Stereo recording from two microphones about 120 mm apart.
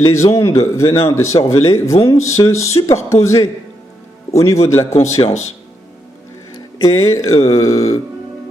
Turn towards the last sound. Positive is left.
turn(degrees=25)  # may be behind; listen again after turning